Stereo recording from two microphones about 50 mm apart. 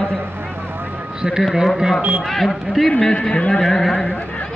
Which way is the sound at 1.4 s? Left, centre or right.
Centre.